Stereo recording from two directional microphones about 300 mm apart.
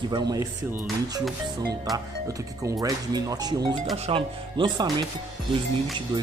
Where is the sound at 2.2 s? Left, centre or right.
Centre.